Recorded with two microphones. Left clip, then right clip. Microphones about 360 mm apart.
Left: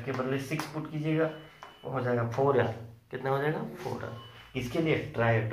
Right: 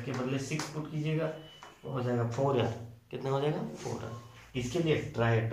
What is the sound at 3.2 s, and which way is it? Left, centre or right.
Speech, centre.